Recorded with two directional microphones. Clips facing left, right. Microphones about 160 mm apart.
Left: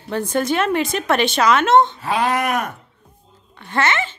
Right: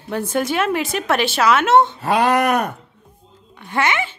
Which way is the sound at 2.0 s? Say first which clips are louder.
Right 3 dB; 40° right (ahead or behind).